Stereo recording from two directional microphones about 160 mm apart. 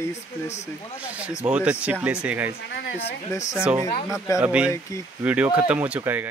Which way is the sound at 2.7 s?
90° left.